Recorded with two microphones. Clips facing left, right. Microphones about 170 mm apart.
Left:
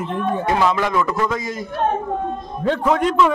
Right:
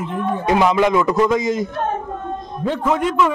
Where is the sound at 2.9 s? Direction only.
5° right (ahead or behind).